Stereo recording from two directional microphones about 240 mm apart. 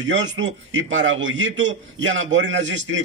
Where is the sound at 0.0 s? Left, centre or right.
Right.